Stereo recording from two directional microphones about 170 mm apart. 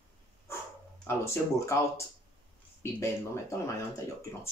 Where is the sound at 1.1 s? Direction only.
15° left (ahead or behind).